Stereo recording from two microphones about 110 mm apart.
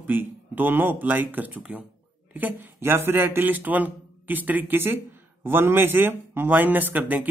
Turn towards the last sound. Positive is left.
turn(degrees=-15)  # may be behind; listen again after turning